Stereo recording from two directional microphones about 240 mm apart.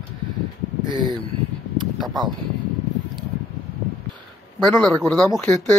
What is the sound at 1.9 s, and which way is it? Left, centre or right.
Speech, centre.